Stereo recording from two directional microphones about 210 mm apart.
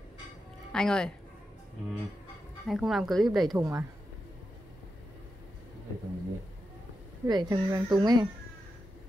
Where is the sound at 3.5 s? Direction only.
15° right (ahead or behind).